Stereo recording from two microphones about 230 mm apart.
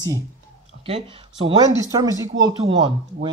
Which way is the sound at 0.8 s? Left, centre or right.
Right.